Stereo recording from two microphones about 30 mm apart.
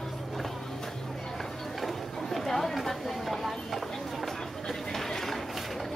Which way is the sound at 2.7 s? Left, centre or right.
Centre.